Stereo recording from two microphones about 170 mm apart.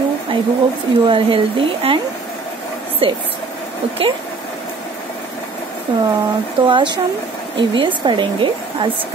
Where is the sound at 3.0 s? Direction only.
30° right (ahead or behind).